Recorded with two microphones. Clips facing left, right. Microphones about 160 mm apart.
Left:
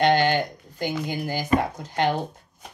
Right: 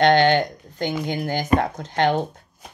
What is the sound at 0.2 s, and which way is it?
Speech, 5° left (ahead or behind).